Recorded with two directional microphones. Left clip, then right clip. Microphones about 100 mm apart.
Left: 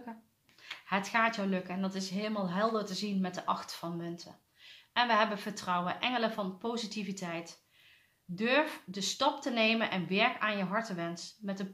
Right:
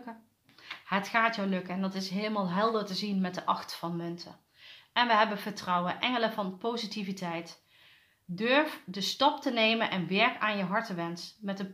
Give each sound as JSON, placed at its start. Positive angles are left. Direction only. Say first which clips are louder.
{"t": 0.7, "sound": "speech", "louder": "right 2 dB", "side_deg": -20}